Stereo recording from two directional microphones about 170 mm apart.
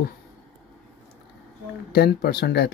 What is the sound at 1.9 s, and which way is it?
Speech, 65° left (ahead or behind).